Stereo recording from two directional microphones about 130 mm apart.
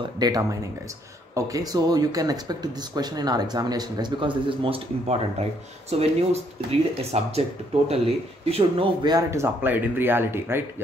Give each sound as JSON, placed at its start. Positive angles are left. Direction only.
{"t": 0.0, "sound": "speech", "side_deg": -30}
{"t": 8.5, "sound": "speech", "side_deg": -50}
{"t": 9.0, "sound": "speech", "side_deg": -25}